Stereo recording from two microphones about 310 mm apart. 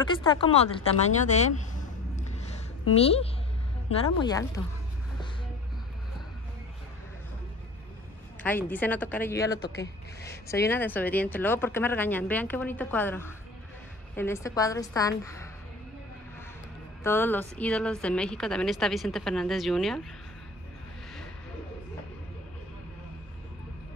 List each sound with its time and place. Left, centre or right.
0.0 s a woman's voice: centre
3.0 s a woman's voice: centre
8.4 s a woman's voice: centre
17.0 s a woman's voice: centre